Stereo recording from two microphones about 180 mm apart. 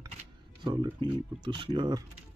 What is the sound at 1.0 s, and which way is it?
Speech, 25° right (ahead or behind).